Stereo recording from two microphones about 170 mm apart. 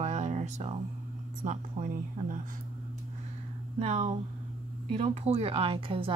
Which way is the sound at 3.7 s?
40° right (ahead or behind).